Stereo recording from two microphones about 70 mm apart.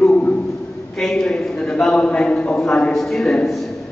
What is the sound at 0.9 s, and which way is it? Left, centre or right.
A man's voice, centre.